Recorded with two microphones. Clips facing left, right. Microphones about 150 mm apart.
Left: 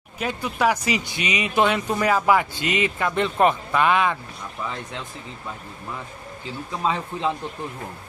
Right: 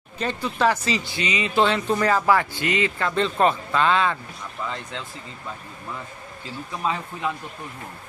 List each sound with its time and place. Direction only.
0.2 s speech: 10° left (ahead or behind)
6.8 s speech: 25° left (ahead or behind)